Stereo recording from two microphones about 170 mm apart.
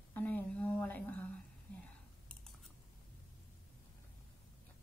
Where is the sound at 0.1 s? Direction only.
10° left (ahead or behind).